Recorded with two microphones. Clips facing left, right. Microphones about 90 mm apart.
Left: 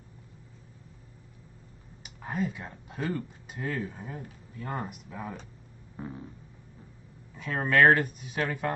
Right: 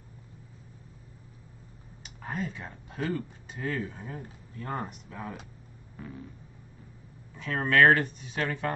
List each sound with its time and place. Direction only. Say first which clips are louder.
2.0 s speech: left 3 dB; 5° left (ahead or behind)
5.9 s a sound: left 3 dB; 25° left (ahead or behind)
7.3 s speech: even; 5° left (ahead or behind)